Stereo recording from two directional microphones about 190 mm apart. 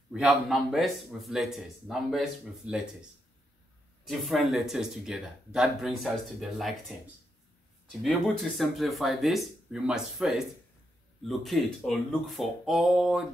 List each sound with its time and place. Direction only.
0.1 s a man's voice: 5° right (ahead or behind)
4.0 s a man's voice: centre (ahead or behind)
8.0 s a man's voice: centre (ahead or behind)